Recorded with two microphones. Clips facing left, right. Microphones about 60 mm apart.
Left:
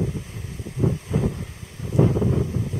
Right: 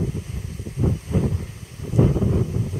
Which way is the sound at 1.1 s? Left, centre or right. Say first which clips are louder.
Right 1 dB; centre.